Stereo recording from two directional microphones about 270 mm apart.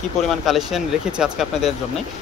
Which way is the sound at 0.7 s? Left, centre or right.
Centre.